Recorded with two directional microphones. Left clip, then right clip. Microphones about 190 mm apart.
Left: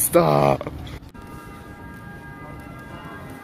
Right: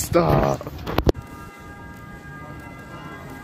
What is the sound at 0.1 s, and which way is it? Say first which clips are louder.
Speech: left 2 dB; 10° left (ahead or behind).